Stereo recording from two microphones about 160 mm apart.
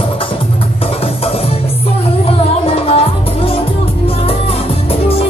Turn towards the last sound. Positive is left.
turn(degrees=40)  # may be behind; listen again after turning